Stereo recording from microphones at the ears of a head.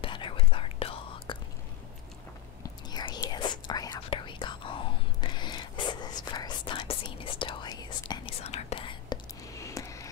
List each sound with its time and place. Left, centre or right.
0.0 s whispering: left
2.6 s whispering: left